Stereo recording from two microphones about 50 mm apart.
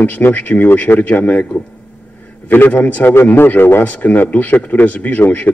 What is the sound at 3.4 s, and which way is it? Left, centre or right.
Speech, left.